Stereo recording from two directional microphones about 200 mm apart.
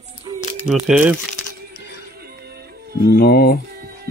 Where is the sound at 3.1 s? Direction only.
50° left (ahead or behind).